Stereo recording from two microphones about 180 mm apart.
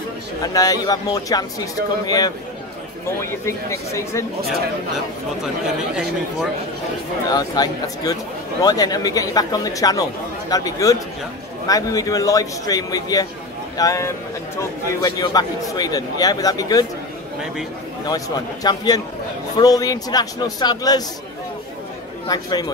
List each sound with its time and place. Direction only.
0.4 s a man's voice: 20° left (ahead or behind)
3.4 s speech: 15° left (ahead or behind)
7.2 s a man's voice: 20° left (ahead or behind)
18.0 s a man's voice: 20° left (ahead or behind)
22.3 s a man's voice: 20° left (ahead or behind)